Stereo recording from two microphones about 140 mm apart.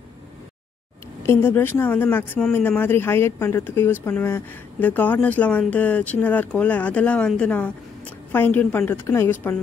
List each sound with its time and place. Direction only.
1.2 s speech: 20° left (ahead or behind)